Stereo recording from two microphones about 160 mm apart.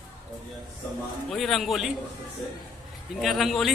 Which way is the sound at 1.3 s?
Centre (ahead or behind).